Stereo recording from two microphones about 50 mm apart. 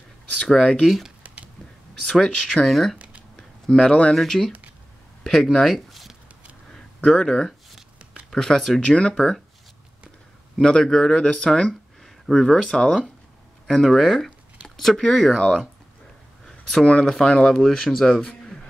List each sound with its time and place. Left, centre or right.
0.5 s speech: centre
0.8 s speech: centre
1.2 s a sound: right
2.0 s speech: centre
3.0 s a sound: right
3.3 s tick-tock: centre
4.1 s speech: centre
8.8 s speech: centre
10.6 s speech: centre
16.4 s a sound: centre
17.1 s speech: centre